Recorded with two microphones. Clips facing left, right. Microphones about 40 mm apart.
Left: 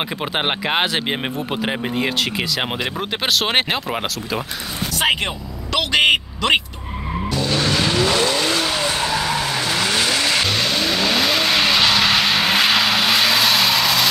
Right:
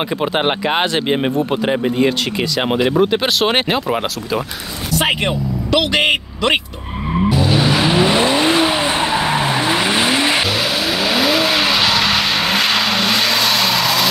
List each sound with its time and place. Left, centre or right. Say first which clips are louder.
0.2 s speech: right 5 dB; centre
7.2 s vehicle: right 4 dB; centre
10.4 s vehicle: right 2 dB; centre